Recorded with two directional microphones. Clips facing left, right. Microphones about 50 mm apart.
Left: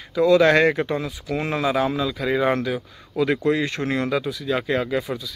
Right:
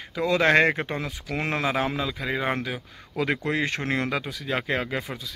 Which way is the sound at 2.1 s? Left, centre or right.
Centre.